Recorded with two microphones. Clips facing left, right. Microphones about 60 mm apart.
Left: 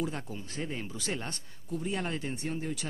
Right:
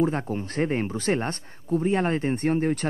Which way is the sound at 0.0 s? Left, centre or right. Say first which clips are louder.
Right 11 dB; right.